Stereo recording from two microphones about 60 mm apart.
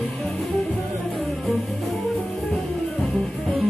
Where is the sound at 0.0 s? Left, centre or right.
Centre.